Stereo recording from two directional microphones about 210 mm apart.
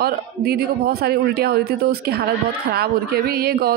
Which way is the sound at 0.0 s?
45° right (ahead or behind).